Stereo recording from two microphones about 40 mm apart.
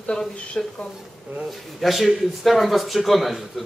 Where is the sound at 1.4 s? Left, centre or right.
Centre.